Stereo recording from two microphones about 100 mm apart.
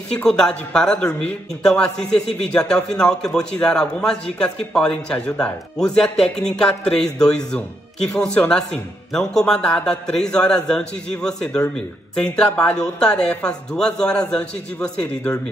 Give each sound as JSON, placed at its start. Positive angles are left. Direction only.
{"t": 0.1, "sound": "speech", "side_deg": 5}